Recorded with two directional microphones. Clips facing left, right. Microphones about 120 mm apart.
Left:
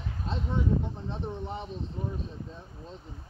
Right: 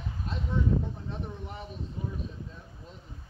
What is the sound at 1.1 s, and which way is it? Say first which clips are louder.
Speech: left 4 dB; 30° left (ahead or behind).